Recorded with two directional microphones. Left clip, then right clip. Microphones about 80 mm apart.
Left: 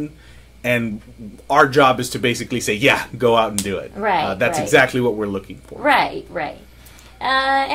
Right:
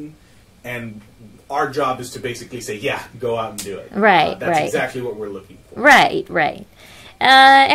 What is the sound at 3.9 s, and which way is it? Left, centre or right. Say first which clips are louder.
Speech: right 6 dB; right.